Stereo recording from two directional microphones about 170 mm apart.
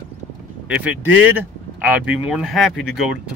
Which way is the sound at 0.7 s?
10° right (ahead or behind).